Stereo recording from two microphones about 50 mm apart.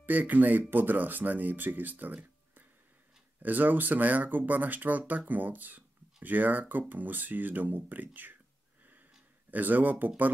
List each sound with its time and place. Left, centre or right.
0.0 s speech: right
3.4 s speech: right
9.5 s speech: right